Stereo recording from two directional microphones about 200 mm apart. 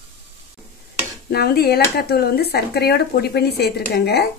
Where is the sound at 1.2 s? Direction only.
50° left (ahead or behind).